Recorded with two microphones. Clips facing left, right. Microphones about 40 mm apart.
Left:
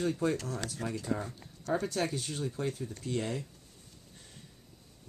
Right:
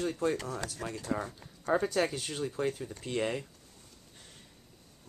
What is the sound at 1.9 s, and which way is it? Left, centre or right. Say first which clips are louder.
Speech: right 3 dB; right.